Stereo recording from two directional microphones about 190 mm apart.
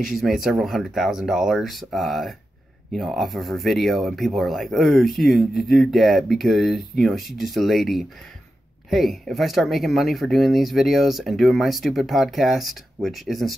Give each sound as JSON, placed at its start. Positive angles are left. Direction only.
{"t": 0.0, "sound": "speech", "side_deg": 0}